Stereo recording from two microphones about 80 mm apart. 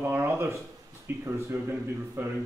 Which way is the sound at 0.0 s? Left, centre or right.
Right.